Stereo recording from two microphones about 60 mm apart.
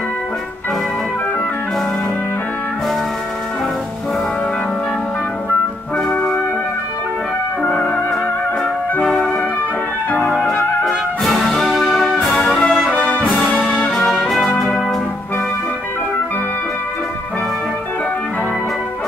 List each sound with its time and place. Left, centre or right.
5.9 s music: centre
7.7 s music: centre
9.0 s music: centre